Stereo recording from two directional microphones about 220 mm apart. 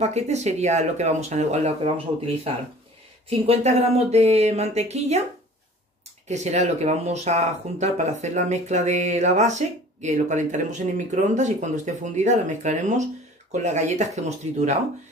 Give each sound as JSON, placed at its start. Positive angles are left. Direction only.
{"t": 0.0, "sound": "speech", "side_deg": -30}
{"t": 3.3, "sound": "a sound", "side_deg": -25}
{"t": 6.2, "sound": "speech", "side_deg": -30}